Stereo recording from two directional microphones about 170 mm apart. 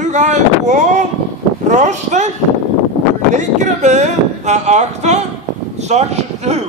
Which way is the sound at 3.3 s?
45° right (ahead or behind).